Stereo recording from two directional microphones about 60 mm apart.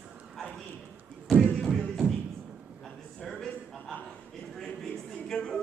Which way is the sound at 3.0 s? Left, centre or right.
Centre.